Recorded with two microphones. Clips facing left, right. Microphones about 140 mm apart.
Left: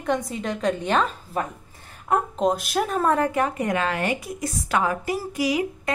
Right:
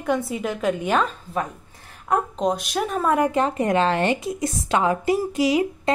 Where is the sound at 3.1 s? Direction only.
20° right (ahead or behind).